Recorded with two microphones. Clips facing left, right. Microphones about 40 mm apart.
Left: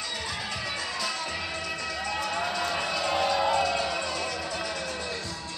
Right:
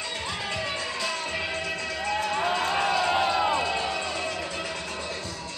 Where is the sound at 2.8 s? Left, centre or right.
Right.